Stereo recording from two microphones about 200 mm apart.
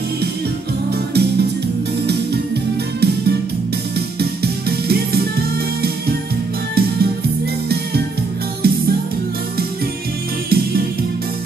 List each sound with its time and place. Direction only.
0.9 s music: 55° right (ahead or behind)
6.7 s music: 50° right (ahead or behind)
8.6 s music: 50° right (ahead or behind)
10.5 s music: 50° right (ahead or behind)